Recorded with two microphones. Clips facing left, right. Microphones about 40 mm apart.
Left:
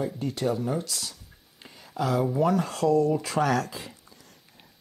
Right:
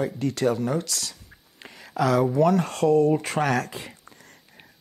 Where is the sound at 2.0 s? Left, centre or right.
Right.